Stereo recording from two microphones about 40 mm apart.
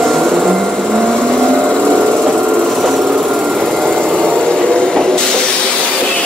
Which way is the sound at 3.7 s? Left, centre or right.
Centre.